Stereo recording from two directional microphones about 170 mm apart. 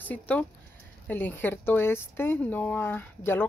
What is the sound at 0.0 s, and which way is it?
A woman's voice, 10° left (ahead or behind).